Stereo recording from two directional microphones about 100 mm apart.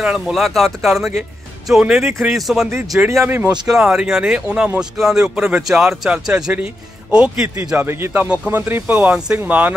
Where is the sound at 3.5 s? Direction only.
5° right (ahead or behind).